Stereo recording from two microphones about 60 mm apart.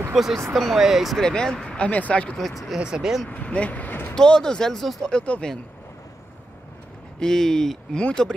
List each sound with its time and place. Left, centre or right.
0.1 s speech: centre
1.2 s speech: centre
1.9 s speech: left
2.3 s speech: centre
2.8 s speech: centre
3.3 s speech: left
4.1 s speech: centre
5.1 s speech: centre
7.2 s speech: centre